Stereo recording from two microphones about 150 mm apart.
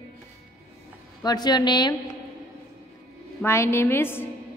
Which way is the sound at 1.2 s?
25° left (ahead or behind).